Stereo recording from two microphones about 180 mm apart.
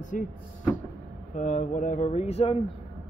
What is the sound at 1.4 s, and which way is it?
Speech, 40° left (ahead or behind).